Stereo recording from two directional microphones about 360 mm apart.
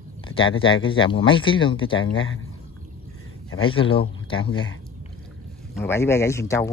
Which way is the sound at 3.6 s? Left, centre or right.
Centre.